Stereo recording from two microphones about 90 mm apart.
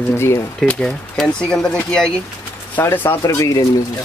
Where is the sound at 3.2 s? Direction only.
40° left (ahead or behind).